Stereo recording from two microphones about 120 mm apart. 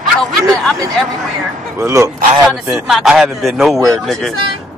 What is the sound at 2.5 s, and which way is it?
Speech, centre (ahead or behind).